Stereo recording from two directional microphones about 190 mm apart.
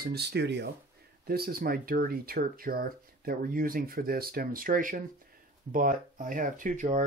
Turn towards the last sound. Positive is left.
turn(degrees=-40)  # may be behind; listen again after turning